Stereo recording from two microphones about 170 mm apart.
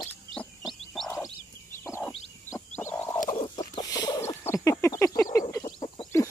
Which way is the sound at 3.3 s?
25° left (ahead or behind).